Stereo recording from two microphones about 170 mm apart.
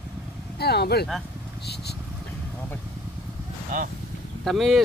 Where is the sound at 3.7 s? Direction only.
50° right (ahead or behind).